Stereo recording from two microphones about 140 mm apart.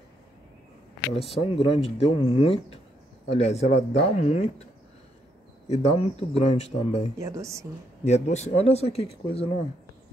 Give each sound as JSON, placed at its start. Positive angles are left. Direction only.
{"t": 1.3, "sound": "speech", "side_deg": 40}
{"t": 5.7, "sound": "speech", "side_deg": 50}
{"t": 7.2, "sound": "speech", "side_deg": -20}
{"t": 8.0, "sound": "speech", "side_deg": 55}